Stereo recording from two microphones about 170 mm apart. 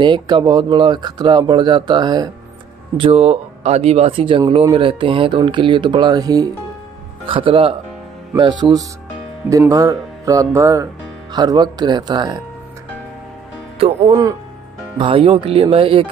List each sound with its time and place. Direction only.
0.0 s speech: 25° right (ahead or behind)
3.0 s speech: 35° right (ahead or behind)
13.7 s speech: 35° right (ahead or behind)